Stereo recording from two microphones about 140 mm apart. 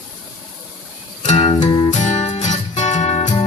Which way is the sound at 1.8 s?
55° left (ahead or behind).